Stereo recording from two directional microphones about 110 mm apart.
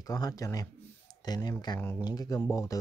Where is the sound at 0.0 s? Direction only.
35° left (ahead or behind).